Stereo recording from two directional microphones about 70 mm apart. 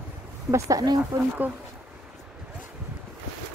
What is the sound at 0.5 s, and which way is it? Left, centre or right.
Speech, right.